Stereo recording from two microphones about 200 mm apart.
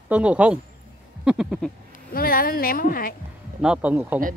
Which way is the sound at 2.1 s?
45° left (ahead or behind).